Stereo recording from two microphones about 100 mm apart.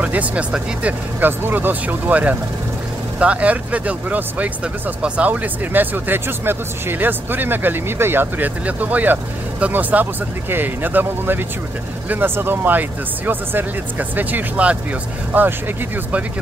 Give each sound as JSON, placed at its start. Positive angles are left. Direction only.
{"t": 0.0, "sound": "speech", "side_deg": -15}